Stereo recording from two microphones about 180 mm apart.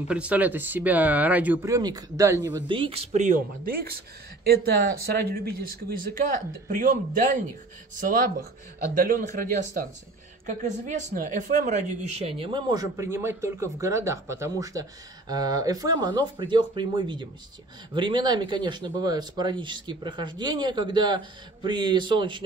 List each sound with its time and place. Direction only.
0.1 s speech: 5° right (ahead or behind)
2.5 s a man's voice: 30° right (ahead or behind); by 7.3 s 50° right (ahead or behind)
8.9 s a man's voice: 50° right (ahead or behind); by 22.4 s 25° right (ahead or behind)